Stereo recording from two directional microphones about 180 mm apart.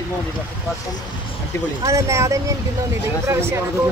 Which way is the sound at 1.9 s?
15° right (ahead or behind).